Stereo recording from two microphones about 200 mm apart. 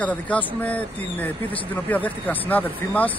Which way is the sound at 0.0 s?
5° left (ahead or behind).